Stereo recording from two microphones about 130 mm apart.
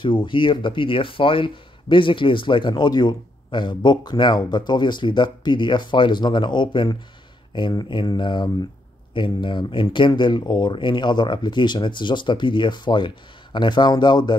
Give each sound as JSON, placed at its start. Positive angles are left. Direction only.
{"t": 0.0, "sound": "speech", "side_deg": 35}